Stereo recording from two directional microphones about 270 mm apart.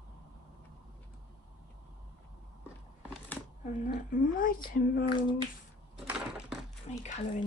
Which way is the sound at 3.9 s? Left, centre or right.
Left.